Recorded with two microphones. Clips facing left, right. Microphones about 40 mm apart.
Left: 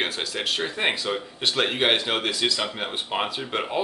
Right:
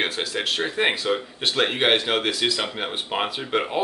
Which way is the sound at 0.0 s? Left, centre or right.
Centre.